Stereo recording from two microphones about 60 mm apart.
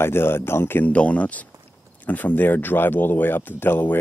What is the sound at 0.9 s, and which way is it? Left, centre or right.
Speech, left.